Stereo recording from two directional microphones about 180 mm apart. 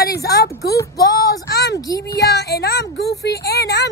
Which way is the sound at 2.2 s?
65° left (ahead or behind).